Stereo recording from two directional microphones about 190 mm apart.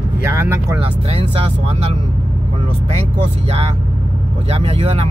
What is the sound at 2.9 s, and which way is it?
Speech, 35° right (ahead or behind).